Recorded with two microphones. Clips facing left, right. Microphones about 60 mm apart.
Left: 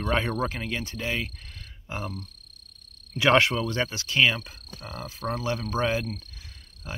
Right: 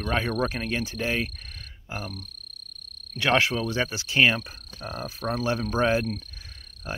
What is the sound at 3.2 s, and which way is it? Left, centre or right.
Cricket, centre.